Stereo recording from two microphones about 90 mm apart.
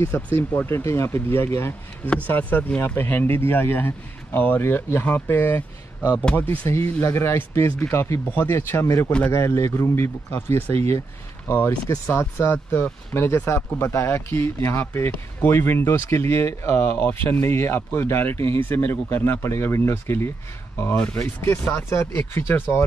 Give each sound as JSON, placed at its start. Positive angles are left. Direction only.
{"t": 0.0, "sound": "speech", "side_deg": 20}
{"t": 6.7, "sound": "speech", "side_deg": 30}
{"t": 20.9, "sound": "speech", "side_deg": 15}